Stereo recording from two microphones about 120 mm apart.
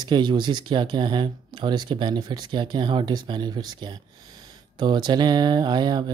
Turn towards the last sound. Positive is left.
turn(degrees=-35)  # may be behind; listen again after turning